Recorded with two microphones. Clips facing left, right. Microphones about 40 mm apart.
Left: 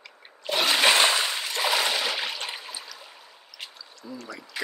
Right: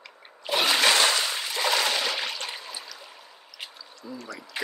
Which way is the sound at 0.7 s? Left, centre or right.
Left.